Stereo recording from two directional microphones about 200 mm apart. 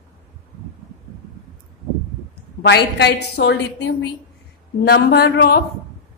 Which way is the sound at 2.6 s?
55° left (ahead or behind).